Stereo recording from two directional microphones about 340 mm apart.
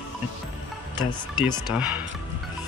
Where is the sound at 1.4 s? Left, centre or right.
Centre.